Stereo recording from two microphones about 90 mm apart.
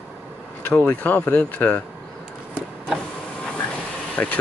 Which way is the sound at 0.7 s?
15° left (ahead or behind).